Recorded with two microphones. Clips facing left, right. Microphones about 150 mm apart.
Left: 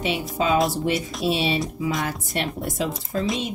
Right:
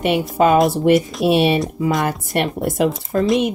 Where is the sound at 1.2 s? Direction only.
60° right (ahead or behind).